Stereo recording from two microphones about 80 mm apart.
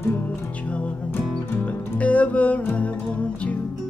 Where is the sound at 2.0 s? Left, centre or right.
Centre.